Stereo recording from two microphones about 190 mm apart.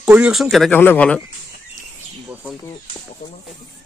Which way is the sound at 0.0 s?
5° right (ahead or behind).